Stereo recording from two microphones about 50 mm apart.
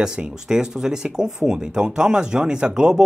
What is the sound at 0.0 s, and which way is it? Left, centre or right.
Speech, centre.